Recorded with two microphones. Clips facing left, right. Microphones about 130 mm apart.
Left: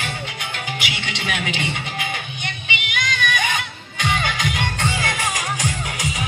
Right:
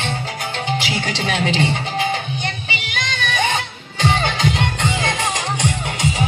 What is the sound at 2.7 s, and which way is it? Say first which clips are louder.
Music: even; 30° right (ahead or behind).